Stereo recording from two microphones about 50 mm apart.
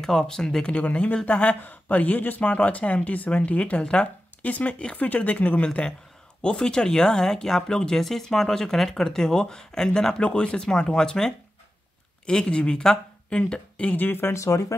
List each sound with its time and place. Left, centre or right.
0.0 s speech: centre
0.7 s speech: left
4.4 s speech: left
13.9 s speech: left
14.3 s speech: left